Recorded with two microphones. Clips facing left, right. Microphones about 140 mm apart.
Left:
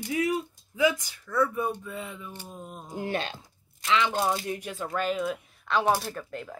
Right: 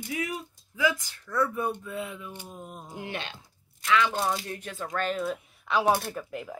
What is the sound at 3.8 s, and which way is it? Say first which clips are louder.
A woman's voice: even; 25° left (ahead or behind).